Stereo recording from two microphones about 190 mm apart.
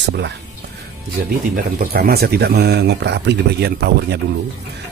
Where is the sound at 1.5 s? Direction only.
50° right (ahead or behind).